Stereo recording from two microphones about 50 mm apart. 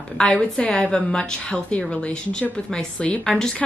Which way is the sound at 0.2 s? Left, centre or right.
Centre.